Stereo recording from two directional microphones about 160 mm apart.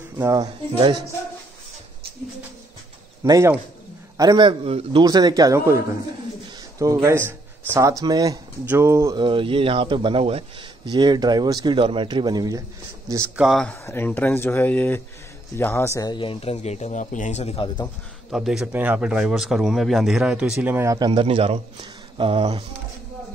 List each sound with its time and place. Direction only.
0.2 s a man's voice: 20° right (ahead or behind)
3.3 s a man's voice: 20° right (ahead or behind); by 5.0 s 35° right (ahead or behind)
5.0 s a man's voice: 25° right (ahead or behind)
9.2 s a man's voice: 30° right (ahead or behind)
13.4 s speech: centre (ahead or behind)
13.8 s speech: 15° left (ahead or behind); by 17.6 s 40° left (ahead or behind)
18.3 s speech: centre (ahead or behind); by 22.6 s 30° right (ahead or behind)